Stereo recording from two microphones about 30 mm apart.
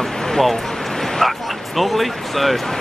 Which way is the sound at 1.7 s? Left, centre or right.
Centre.